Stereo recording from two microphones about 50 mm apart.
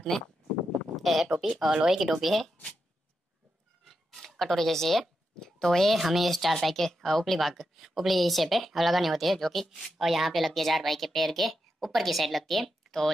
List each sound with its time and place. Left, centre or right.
0.9 s speech: centre
3.9 s a woman's voice: centre